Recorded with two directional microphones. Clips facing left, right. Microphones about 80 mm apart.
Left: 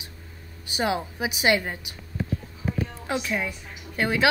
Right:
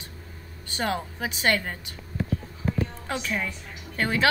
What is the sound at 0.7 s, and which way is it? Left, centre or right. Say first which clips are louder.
Speech: left 2 dB; centre.